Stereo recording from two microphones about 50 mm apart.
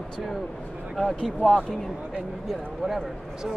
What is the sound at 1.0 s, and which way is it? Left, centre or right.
Speech, centre.